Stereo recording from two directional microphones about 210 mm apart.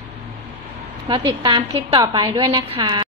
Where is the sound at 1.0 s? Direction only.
20° right (ahead or behind).